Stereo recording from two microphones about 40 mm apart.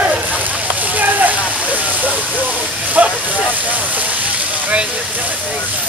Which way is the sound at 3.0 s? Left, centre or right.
Right.